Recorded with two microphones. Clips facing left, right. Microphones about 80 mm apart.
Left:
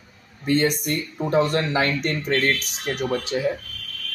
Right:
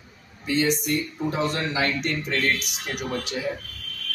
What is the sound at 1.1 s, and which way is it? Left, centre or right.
Speech, left.